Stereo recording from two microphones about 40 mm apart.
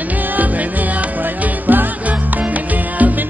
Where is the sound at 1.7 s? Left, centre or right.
Right.